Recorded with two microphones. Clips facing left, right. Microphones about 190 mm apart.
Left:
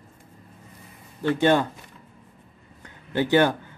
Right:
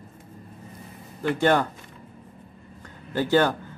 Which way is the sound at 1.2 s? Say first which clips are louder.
Left 1 dB; 20° left (ahead or behind).